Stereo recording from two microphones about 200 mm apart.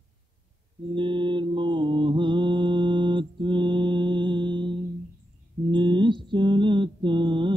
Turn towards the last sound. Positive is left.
turn(degrees=-25)  # may be behind; listen again after turning